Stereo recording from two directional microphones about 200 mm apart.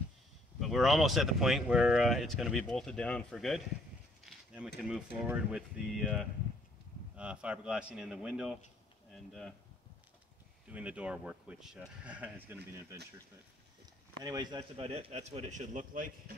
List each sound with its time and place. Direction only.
0.6 s speech: centre (ahead or behind)
4.2 s a sound: centre (ahead or behind)
4.8 s speech: 5° right (ahead or behind)
10.7 s speech: 5° right (ahead or behind)
14.2 s a man's voice: 20° right (ahead or behind); by 16.1 s 40° right (ahead or behind)